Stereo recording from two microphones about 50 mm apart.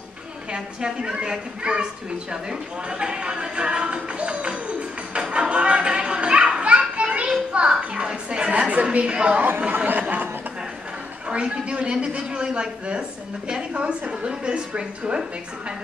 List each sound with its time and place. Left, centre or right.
0.5 s a man's voice: centre
2.9 s speech: centre
5.1 s children playing: centre
9.6 s speech: right
11.2 s a man's voice: right